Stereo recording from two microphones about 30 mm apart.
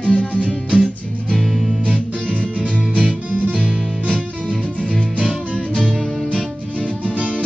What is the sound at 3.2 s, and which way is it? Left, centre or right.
Music, right.